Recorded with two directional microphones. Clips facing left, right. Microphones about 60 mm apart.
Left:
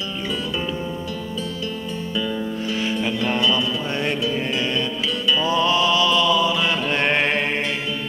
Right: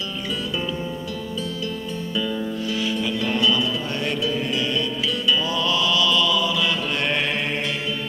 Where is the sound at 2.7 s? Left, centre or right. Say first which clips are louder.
Left 2 dB; left.